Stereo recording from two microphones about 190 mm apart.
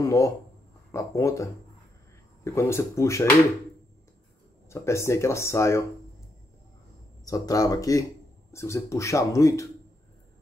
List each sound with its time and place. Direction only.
0.0 s speech: 15° left (ahead or behind)
4.6 s speech: 15° left (ahead or behind)
7.2 s speech: 20° left (ahead or behind)